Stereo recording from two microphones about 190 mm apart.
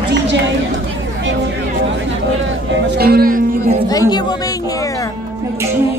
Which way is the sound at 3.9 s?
20° left (ahead or behind).